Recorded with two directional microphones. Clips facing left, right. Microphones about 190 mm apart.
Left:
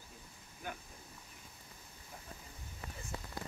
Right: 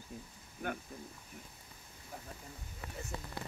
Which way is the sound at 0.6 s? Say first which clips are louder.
Right 6 dB; 55° right (ahead or behind).